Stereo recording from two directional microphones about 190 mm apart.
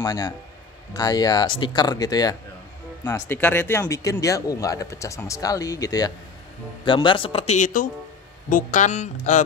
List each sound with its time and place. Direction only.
0.0 s speech: 20° left (ahead or behind); by 9.4 s 40° left (ahead or behind)